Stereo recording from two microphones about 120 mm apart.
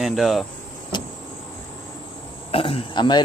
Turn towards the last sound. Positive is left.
turn(degrees=40)  # may be behind; listen again after turning